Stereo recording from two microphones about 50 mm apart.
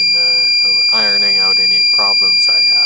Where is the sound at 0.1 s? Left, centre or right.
Centre.